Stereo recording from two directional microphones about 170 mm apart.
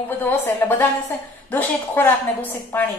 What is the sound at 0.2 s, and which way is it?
A woman's voice, 10° left (ahead or behind).